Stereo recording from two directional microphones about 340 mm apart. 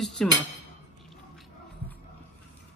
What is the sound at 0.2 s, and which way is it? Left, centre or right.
Speech, centre.